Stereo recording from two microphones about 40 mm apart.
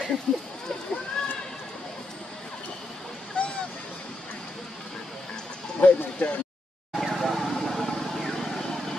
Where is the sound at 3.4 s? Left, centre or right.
Left.